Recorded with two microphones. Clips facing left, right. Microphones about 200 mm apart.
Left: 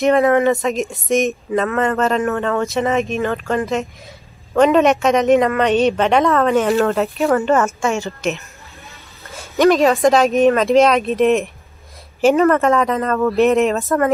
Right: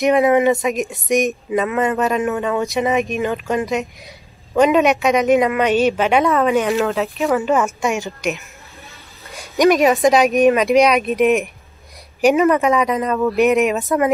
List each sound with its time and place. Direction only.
0.0 s speech: 15° right (ahead or behind)
4.7 s speech: centre (ahead or behind)
9.3 s speech: 15° right (ahead or behind)